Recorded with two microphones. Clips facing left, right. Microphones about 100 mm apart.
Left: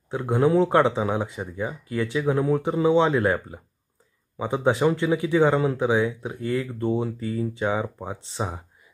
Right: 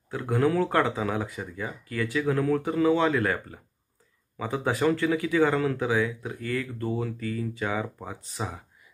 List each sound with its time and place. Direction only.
0.1 s speech: 25° left (ahead or behind)
4.6 s speech: 20° left (ahead or behind)